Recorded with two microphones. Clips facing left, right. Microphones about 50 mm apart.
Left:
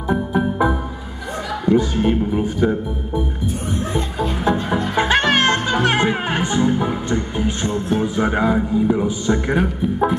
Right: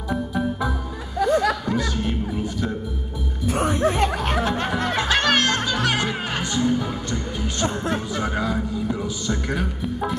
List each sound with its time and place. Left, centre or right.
0.1 s music: left
3.4 s music: right
4.9 s music: left
8.0 s a sound: left